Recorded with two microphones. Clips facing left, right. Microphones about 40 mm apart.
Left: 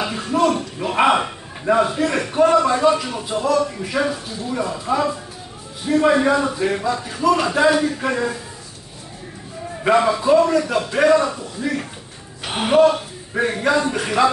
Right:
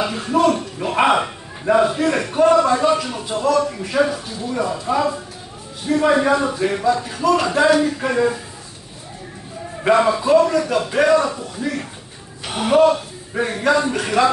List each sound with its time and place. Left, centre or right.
0.0 s a sound: centre
0.6 s a man's voice: centre
9.8 s a man's voice: centre
12.4 s a man's voice: left
13.3 s a man's voice: centre